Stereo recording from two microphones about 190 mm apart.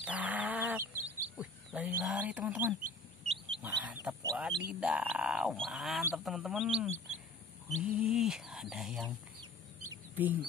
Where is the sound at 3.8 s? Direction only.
10° right (ahead or behind).